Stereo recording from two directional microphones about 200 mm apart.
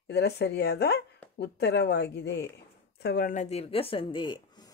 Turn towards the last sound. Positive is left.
turn(degrees=20)  # may be behind; listen again after turning